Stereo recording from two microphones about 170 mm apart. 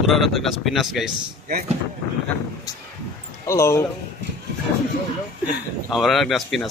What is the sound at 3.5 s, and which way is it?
Speech, 15° left (ahead or behind).